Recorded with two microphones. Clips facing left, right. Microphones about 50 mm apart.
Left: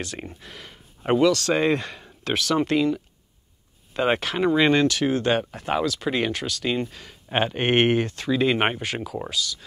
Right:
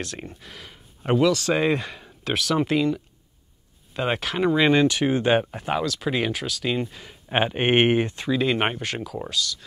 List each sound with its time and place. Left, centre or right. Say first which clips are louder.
0.0 s speech: even; centre
4.8 s speech: right 1 dB; centre
5.7 s speech: left 2 dB; centre
8.3 s speech: left 2 dB; centre